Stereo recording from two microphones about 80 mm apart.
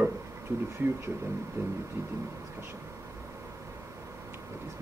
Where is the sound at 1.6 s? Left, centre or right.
Right.